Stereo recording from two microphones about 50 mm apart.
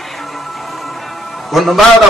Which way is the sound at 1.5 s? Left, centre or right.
Centre.